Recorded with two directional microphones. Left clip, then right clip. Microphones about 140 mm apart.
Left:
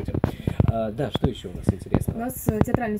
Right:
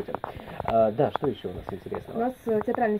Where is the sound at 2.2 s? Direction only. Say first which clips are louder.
Right 1 dB; 15° left (ahead or behind).